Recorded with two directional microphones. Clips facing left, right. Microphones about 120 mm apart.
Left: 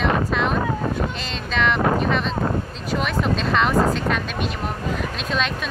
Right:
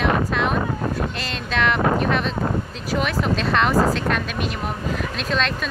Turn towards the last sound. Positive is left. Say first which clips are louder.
# right 1 dB
turn(degrees=5)  # may be behind; listen again after turning